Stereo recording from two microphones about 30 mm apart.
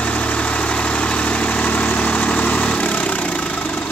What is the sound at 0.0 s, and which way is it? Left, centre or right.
Vehicle, left.